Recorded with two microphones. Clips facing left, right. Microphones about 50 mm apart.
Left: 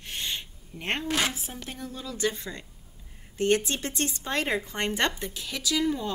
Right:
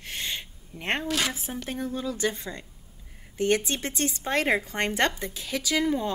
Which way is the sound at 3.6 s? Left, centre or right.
Right.